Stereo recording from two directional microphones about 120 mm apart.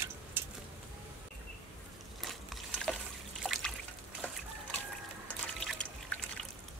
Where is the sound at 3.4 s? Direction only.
Centre (ahead or behind).